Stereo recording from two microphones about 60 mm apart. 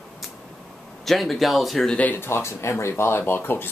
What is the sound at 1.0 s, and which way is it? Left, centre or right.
Speech, centre.